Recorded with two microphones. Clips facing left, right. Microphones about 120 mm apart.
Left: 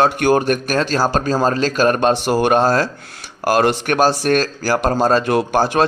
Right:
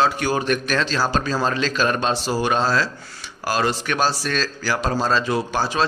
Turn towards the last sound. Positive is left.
turn(degrees=55)  # may be behind; listen again after turning